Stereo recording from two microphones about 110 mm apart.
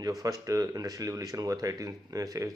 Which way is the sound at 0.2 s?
35° right (ahead or behind).